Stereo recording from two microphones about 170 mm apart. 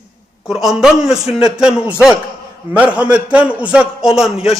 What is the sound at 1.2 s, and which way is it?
Speech, 35° left (ahead or behind).